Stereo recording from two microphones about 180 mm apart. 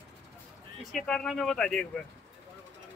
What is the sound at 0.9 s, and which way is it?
Speech, 5° left (ahead or behind).